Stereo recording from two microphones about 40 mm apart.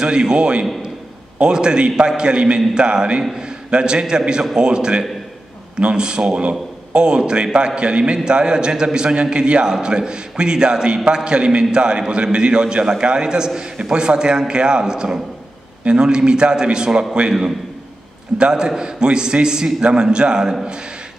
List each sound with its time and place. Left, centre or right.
0.0 s a man's voice: right
18.4 s a man's voice: centre